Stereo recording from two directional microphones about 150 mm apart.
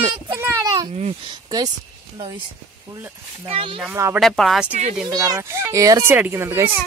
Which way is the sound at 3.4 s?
40° right (ahead or behind).